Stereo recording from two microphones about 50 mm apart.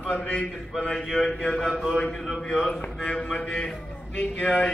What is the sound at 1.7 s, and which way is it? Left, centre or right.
Music, centre.